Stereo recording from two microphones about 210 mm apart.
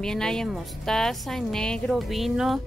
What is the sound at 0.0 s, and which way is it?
A woman's voice, 5° left (ahead or behind).